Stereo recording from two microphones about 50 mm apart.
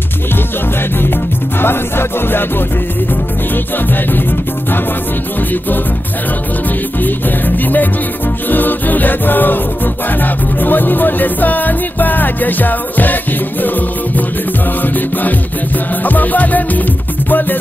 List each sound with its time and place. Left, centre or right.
1.6 s music: left
3.7 s music: left
7.0 s music: left